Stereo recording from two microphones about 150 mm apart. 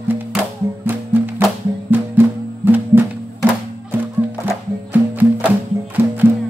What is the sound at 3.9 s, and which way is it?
Music, 15° right (ahead or behind).